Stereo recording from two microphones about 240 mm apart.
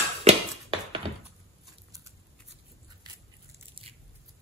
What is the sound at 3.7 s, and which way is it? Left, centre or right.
Biting, right.